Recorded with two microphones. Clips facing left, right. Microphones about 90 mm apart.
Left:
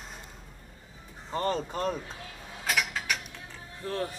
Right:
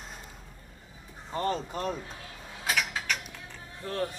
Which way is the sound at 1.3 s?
40° left (ahead or behind).